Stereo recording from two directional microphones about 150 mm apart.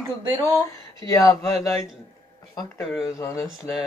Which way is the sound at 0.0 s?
20° right (ahead or behind).